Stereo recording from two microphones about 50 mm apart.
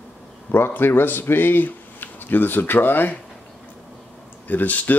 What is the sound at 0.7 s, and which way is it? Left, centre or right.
Speech, left.